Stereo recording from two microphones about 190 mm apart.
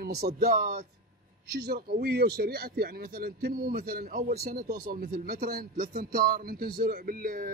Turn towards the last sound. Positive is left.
turn(degrees=-50)  # may be behind; listen again after turning